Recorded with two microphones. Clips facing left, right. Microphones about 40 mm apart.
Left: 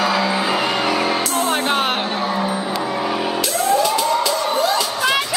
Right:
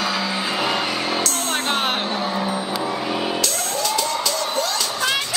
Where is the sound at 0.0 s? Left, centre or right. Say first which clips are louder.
Left 5 dB; centre.